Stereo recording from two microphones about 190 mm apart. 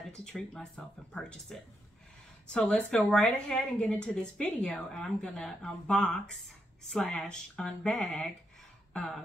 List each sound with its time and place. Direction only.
0.1 s a woman's voice: 5° left (ahead or behind)